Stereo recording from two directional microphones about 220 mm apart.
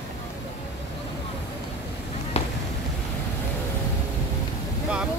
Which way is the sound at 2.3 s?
30° left (ahead or behind).